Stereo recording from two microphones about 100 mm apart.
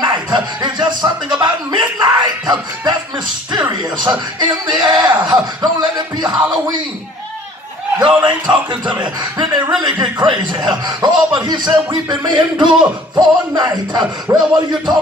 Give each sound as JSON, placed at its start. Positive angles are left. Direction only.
{"t": 0.0, "sound": "music", "side_deg": -45}
{"t": 1.4, "sound": "speech", "side_deg": -50}
{"t": 4.0, "sound": "speech", "side_deg": -50}
{"t": 8.0, "sound": "speech", "side_deg": -50}